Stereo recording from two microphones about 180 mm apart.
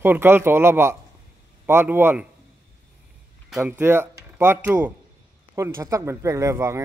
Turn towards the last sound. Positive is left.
turn(degrees=-15)  # may be behind; listen again after turning